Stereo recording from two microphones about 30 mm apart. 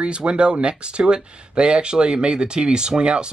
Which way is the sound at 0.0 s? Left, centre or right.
Right.